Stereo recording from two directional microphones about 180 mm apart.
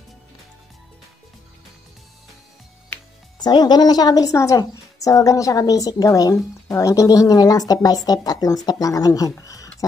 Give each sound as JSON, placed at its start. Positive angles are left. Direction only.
{"t": 3.3, "sound": "a woman's voice", "side_deg": 25}